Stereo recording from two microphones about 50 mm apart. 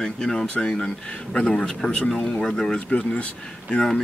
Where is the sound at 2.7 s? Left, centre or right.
Left.